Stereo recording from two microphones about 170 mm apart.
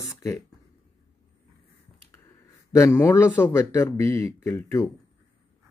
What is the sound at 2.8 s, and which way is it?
Speech, 15° left (ahead or behind).